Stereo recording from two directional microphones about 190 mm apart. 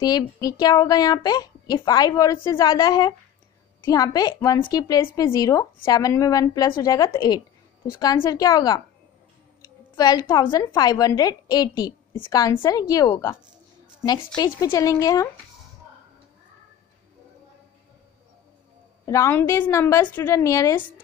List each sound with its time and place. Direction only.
0.0 s a woman's voice: 20° left (ahead or behind)
9.9 s a woman's voice: 20° left (ahead or behind)
19.0 s a woman's voice: 15° left (ahead or behind)